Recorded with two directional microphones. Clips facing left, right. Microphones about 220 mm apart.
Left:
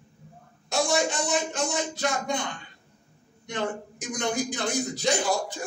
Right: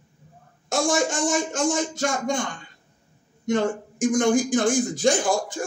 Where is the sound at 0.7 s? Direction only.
45° right (ahead or behind).